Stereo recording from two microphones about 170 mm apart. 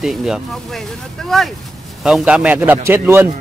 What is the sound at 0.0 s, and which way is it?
Speech, centre (ahead or behind).